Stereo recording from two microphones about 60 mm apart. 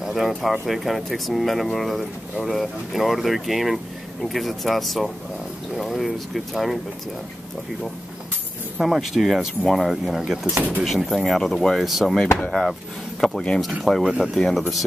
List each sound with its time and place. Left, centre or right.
0.0 s bird: centre
0.4 s speech: centre
8.7 s speech: centre
10.4 s speech: right
10.8 s speech: centre
13.2 s speech: centre